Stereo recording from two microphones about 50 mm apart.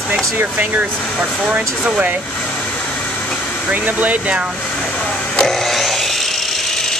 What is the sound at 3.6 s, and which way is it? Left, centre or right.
Speech, right.